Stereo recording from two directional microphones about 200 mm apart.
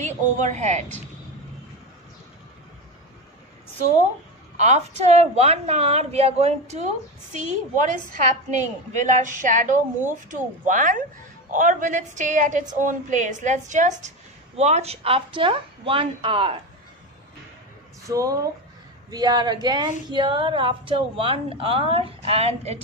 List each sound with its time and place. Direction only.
0.0 s a woman's voice: 35° right (ahead or behind)
4.6 s a woman's voice: 35° right (ahead or behind)
18.0 s speech: 15° right (ahead or behind); by 22.8 s 30° right (ahead or behind)